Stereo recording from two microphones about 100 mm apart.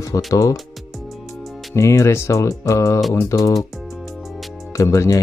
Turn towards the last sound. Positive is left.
turn(degrees=30)  # may be behind; listen again after turning